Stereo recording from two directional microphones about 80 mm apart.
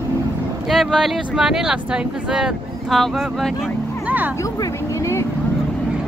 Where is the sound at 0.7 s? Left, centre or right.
Centre.